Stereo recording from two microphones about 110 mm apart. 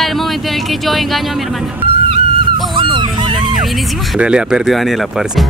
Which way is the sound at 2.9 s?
50° right (ahead or behind).